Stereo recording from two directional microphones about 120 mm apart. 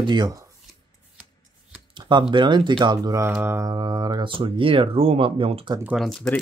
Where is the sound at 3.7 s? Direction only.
35° right (ahead or behind); by 5.7 s 50° right (ahead or behind).